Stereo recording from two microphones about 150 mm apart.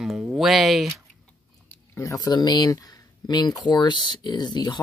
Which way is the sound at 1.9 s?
20° left (ahead or behind).